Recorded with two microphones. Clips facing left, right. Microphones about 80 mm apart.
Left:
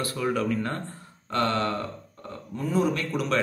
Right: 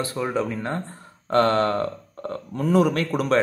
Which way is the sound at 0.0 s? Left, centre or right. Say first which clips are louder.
Right 2 dB; right.